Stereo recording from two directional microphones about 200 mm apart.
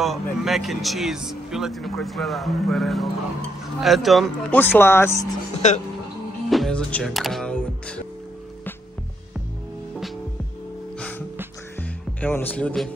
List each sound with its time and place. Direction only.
0.0 s speech: centre (ahead or behind)
5.6 s speech: 35° left (ahead or behind)
6.5 s speech: 5° left (ahead or behind)
11.0 s music: 5° left (ahead or behind)
12.2 s speech: 10° left (ahead or behind)